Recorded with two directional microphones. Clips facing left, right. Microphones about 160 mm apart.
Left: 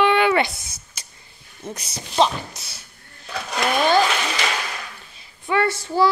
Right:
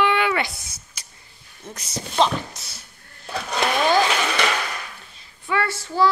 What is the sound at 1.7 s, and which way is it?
Speech, 10° left (ahead or behind).